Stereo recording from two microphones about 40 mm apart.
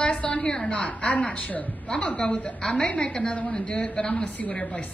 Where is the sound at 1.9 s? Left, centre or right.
Left.